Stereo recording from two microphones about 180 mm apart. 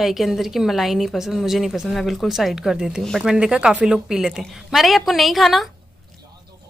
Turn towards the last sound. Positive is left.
turn(degrees=0)  # may be behind; listen again after turning